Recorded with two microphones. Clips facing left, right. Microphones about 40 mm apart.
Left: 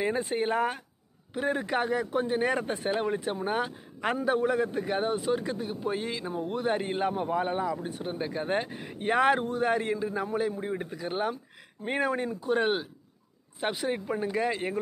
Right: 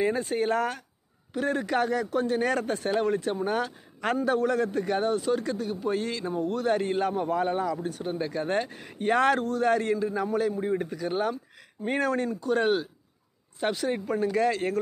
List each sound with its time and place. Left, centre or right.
0.0 s a man's voice: left